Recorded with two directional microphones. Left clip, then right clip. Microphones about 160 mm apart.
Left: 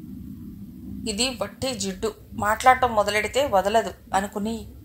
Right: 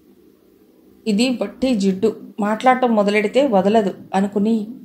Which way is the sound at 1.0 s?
40° left (ahead or behind).